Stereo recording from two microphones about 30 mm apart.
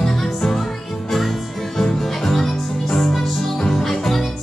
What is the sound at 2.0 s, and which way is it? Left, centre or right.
Music, centre.